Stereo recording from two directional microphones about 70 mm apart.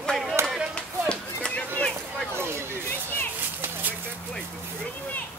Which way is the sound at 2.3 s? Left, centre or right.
Right.